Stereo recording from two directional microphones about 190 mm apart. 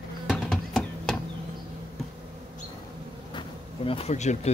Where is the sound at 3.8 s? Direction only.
30° left (ahead or behind).